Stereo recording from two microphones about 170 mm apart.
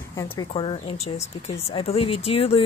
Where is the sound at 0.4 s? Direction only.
30° left (ahead or behind).